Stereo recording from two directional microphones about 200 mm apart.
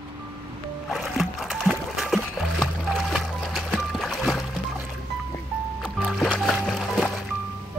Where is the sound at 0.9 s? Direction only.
Centre (ahead or behind).